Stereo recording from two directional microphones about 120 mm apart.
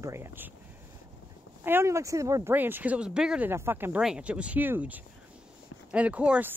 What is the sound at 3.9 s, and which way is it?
Speech, 5° right (ahead or behind).